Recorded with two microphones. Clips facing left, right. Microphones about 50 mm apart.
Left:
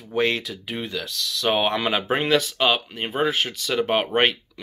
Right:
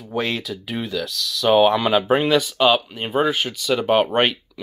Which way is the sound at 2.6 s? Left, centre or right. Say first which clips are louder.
Right 4 dB; centre.